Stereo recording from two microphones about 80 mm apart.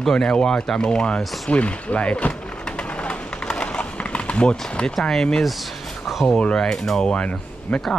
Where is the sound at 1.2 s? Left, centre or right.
Centre.